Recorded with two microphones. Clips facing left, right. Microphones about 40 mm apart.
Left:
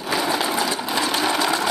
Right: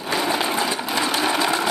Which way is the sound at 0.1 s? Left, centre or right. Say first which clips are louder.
Even; centre.